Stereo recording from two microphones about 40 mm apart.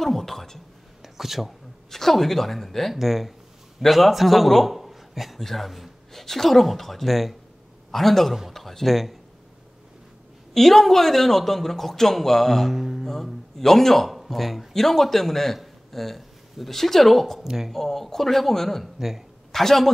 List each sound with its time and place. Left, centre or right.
0.0 s speech: centre
1.0 s speech: centre
1.9 s a man's voice: centre
10.5 s speech: centre
12.7 s mantra: centre
13.0 s a man's voice: centre
17.4 s speech: centre
17.7 s speech: centre
18.9 s speech: centre
19.5 s speech: centre